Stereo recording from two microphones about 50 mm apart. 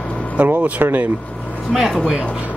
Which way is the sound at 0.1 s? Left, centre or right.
Left.